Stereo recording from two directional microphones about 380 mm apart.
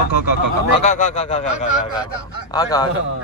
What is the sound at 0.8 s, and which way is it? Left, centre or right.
Speech, centre.